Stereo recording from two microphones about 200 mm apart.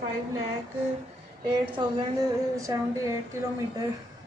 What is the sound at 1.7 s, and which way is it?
A woman's voice, 20° right (ahead or behind).